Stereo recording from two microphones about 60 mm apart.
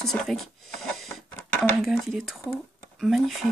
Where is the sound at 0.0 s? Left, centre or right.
Centre.